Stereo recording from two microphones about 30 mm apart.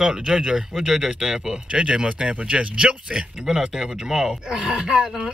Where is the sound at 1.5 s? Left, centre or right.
Right.